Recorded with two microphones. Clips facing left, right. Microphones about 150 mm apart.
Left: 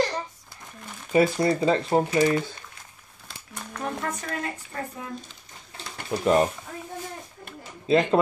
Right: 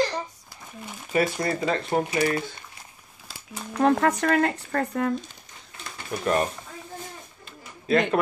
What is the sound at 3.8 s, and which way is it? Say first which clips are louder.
Speech: right 11 dB; 75° right (ahead or behind).